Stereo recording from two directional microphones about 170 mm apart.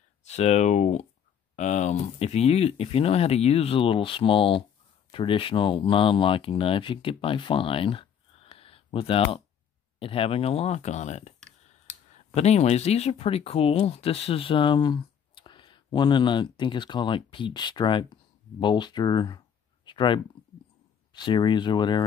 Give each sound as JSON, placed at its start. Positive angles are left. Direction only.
{"t": 0.3, "sound": "speech", "side_deg": 40}
{"t": 12.4, "sound": "speech", "side_deg": 40}